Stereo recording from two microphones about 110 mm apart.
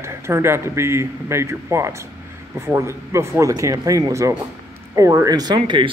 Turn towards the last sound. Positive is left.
turn(degrees=-40)  # may be behind; listen again after turning